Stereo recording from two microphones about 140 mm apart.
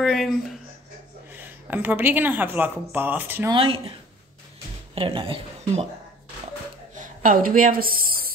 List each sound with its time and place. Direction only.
0.0 s speech: centre (ahead or behind)
1.3 s speech: 15° right (ahead or behind)
3.5 s speech: 40° right (ahead or behind)
4.9 s speech: 40° right (ahead or behind)
7.0 s a woman's voice: 80° right